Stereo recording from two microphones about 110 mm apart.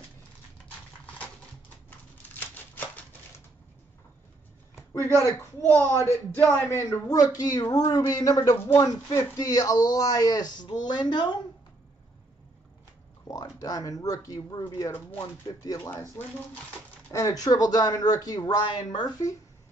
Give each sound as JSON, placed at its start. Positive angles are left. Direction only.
{"t": 2.4, "sound": "a sound", "side_deg": 15}
{"t": 5.2, "sound": "speech", "side_deg": 25}
{"t": 13.3, "sound": "speech", "side_deg": 35}
{"t": 14.9, "sound": "speech", "side_deg": 15}
{"t": 15.1, "sound": "speech", "side_deg": 30}
{"t": 17.1, "sound": "speech", "side_deg": 35}